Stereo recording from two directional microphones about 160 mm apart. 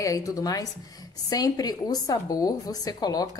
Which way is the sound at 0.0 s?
20° left (ahead or behind).